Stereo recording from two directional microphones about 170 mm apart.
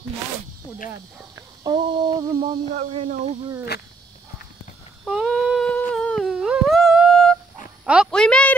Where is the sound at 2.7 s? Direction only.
40° right (ahead or behind).